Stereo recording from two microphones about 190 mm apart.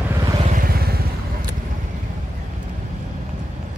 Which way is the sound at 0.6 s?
50° right (ahead or behind).